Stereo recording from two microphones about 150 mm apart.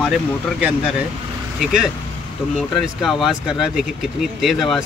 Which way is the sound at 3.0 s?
Centre (ahead or behind).